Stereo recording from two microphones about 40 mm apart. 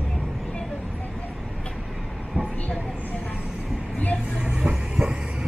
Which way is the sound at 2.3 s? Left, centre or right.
Right.